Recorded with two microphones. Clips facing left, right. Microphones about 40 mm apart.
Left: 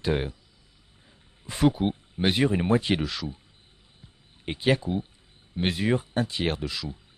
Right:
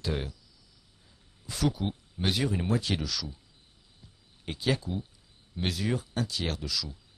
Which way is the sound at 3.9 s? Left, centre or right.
Left.